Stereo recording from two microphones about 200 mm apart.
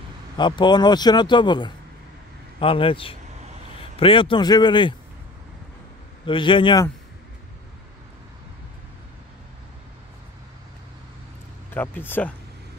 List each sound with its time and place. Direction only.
0.4 s speech: 25° left (ahead or behind)
6.2 s speech: 25° left (ahead or behind)
11.7 s speech: 10° left (ahead or behind)